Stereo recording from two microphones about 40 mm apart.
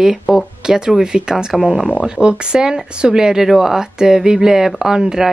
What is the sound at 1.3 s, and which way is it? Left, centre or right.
Speech, centre.